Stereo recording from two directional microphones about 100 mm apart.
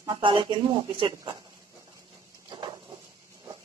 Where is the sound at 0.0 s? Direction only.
50° right (ahead or behind).